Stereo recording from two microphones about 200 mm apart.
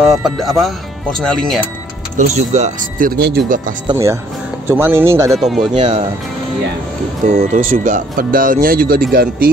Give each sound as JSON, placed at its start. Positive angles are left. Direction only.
{"t": 0.0, "sound": "speech", "side_deg": 0}
{"t": 2.1, "sound": "speech", "side_deg": -35}
{"t": 3.9, "sound": "speech", "side_deg": -15}
{"t": 5.3, "sound": "speech", "side_deg": 0}
{"t": 5.8, "sound": "speech", "side_deg": -35}
{"t": 7.2, "sound": "speech", "side_deg": -40}